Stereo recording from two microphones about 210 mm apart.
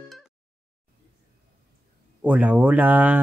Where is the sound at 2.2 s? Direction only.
5° right (ahead or behind).